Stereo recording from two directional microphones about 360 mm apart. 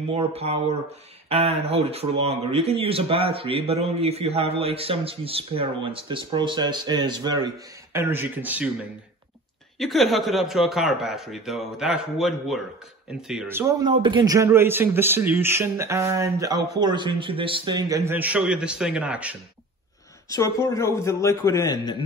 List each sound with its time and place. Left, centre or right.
0.1 s a man's voice: centre
9.8 s a man's voice: centre
20.3 s a man's voice: centre